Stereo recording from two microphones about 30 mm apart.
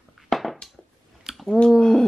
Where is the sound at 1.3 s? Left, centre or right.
Centre.